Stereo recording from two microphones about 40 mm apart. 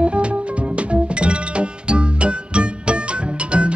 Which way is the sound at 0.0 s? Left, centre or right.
Right.